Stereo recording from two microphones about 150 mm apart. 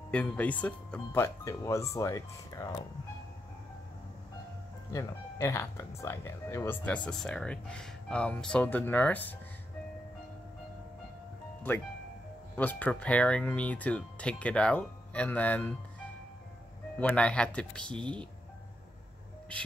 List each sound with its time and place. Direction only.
0.1 s speech: 10° left (ahead or behind)
4.9 s speech: 20° left (ahead or behind)
12.5 s speech: 10° left (ahead or behind)
17.0 s speech: 10° left (ahead or behind)
17.9 s speech: 35° right (ahead or behind)